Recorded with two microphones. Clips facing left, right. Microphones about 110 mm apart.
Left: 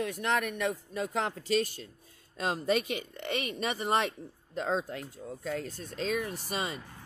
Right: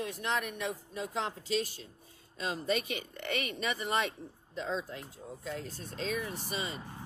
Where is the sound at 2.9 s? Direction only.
50° right (ahead or behind).